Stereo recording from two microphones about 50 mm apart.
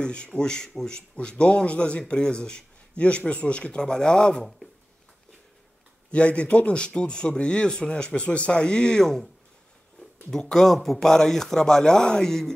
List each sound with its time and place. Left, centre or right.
0.0 s speech: centre
6.1 s speech: left; by 9.3 s centre
10.3 s speech: centre